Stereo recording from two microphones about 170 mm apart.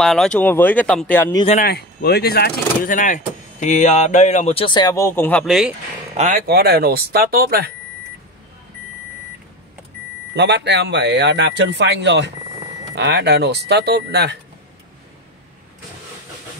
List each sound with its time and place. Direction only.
0.0 s speech: centre (ahead or behind)
1.6 s speech: 65° left (ahead or behind); by 5.4 s 10° left (ahead or behind)
5.4 s speech: centre (ahead or behind)
6.1 s speech: 45° right (ahead or behind)
6.4 s speech: 65° right (ahead or behind)
10.3 s speech: 90° right